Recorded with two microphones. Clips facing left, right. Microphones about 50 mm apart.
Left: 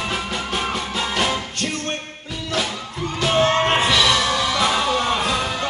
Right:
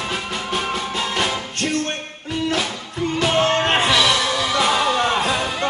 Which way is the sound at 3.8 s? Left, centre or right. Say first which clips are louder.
Even; centre.